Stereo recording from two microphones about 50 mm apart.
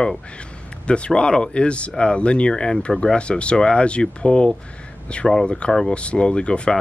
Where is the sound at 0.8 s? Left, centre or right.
Left.